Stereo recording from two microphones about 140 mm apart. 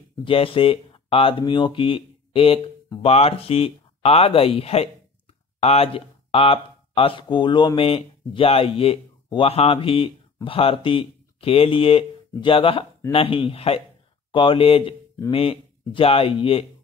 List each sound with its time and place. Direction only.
0.2 s speech: 40° left (ahead or behind)